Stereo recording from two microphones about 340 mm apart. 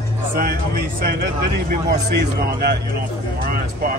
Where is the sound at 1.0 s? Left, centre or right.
Right.